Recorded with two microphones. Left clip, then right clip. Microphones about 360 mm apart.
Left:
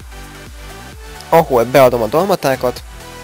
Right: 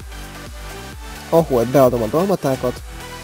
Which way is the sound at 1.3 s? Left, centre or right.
Left.